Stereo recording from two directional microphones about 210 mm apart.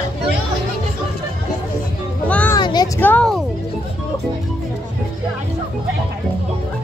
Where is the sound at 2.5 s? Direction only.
20° left (ahead or behind).